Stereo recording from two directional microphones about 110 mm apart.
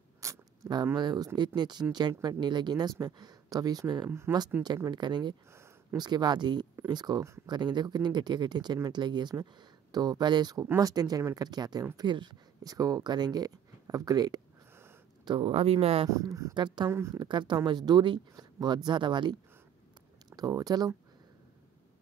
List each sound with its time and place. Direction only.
0.2 s zipper: 30° right (ahead or behind)
0.9 s speech: 40° right (ahead or behind)
15.2 s speech: 55° right (ahead or behind)
16.1 s speech: 30° right (ahead or behind)
16.5 s speech: 40° right (ahead or behind)
16.9 s speech: 25° right (ahead or behind)
17.2 s speech: 45° right (ahead or behind)
20.3 s speech: 35° right (ahead or behind)